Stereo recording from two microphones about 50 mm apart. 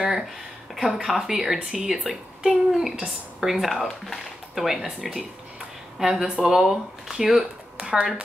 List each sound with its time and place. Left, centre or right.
0.7 s a woman's voice: centre
7.7 s speech: centre